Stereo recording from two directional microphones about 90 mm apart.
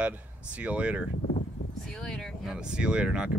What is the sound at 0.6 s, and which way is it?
Speech, 15° right (ahead or behind).